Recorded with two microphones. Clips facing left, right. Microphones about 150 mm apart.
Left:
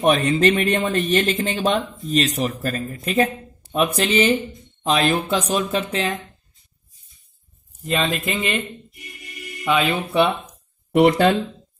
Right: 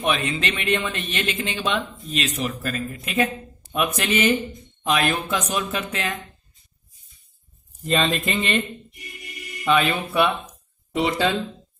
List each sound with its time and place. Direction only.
0.0 s speech: 40° left (ahead or behind)
7.8 s speech: 5° left (ahead or behind)
9.7 s speech: 15° left (ahead or behind)
10.9 s speech: 60° left (ahead or behind)